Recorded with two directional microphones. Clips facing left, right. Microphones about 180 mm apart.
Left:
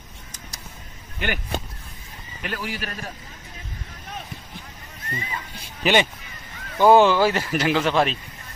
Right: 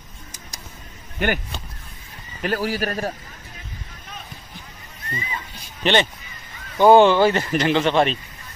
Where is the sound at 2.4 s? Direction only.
40° right (ahead or behind).